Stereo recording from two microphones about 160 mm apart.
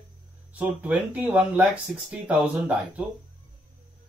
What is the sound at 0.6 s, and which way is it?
Speech, 10° right (ahead or behind).